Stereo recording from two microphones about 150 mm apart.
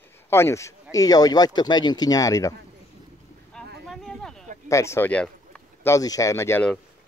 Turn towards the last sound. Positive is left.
turn(degrees=15)  # may be behind; listen again after turning